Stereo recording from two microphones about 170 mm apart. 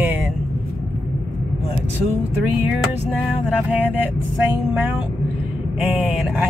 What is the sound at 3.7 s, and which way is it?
Speech, 10° right (ahead or behind).